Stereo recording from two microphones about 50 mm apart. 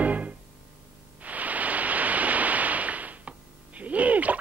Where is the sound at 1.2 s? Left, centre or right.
Right.